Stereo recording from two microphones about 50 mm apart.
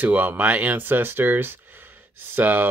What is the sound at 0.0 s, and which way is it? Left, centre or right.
Speech, right.